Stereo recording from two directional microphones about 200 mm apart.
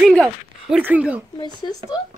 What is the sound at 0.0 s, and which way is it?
Speech, 5° right (ahead or behind).